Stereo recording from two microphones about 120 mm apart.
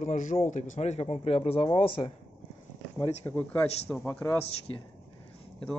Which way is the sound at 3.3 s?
15° left (ahead or behind).